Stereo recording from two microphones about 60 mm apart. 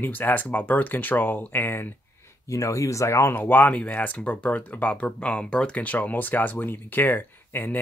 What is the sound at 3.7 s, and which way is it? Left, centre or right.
Speech, left.